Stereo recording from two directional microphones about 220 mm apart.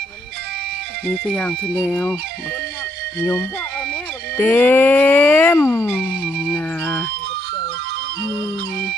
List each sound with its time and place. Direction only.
1.0 s speech: 5° left (ahead or behind)
4.4 s a sound: 10° left (ahead or behind)
8.2 s music: 50° right (ahead or behind)